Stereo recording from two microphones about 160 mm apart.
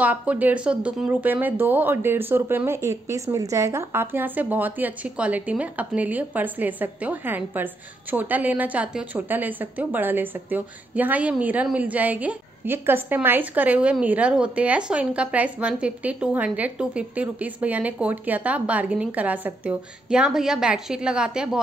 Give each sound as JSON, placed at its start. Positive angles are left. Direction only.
{"t": 0.0, "sound": "speech", "side_deg": -10}